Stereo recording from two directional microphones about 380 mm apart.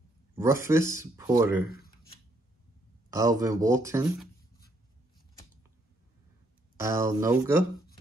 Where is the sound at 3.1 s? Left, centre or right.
Centre.